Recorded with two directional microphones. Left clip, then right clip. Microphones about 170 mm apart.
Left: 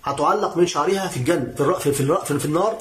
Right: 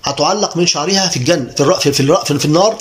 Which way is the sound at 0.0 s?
10° right (ahead or behind).